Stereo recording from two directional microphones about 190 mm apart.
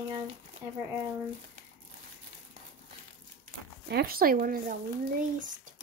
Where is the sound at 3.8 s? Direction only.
55° right (ahead or behind).